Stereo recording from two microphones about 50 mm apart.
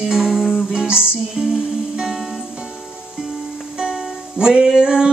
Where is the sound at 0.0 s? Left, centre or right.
Centre.